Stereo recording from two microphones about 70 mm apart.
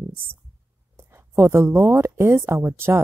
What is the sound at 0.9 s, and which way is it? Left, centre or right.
Speech, right.